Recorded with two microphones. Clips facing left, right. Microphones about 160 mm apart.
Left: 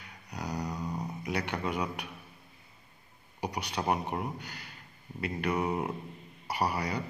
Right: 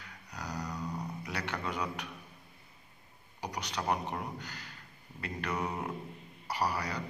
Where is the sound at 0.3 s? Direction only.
10° left (ahead or behind).